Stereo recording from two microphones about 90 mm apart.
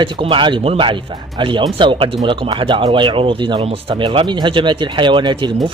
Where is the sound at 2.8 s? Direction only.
65° right (ahead or behind).